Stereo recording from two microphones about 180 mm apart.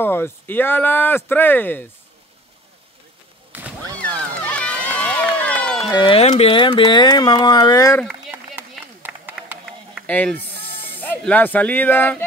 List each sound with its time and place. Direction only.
0.0 s speech: 10° left (ahead or behind)
3.5 s a sound: 10° right (ahead or behind)
4.5 s run: 5° left (ahead or behind)
5.8 s speech: 20° left (ahead or behind)
8.1 s run: 10° right (ahead or behind)
9.0 s a sound: 10° right (ahead or behind)
10.0 s speech: 10° left (ahead or behind)